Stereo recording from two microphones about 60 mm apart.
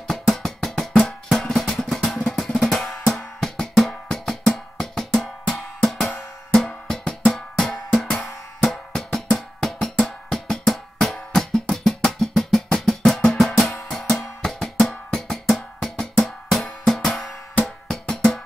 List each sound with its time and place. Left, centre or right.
0.0 s music: centre
2.3 s drum: centre
3.2 s music: centre